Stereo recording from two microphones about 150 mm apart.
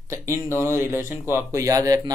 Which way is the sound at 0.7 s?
20° right (ahead or behind).